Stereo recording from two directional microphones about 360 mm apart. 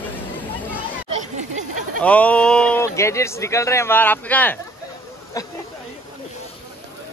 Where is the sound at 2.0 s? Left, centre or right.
Centre.